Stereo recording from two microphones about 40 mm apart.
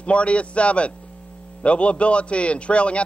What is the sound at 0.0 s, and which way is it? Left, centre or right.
A man's voice, left.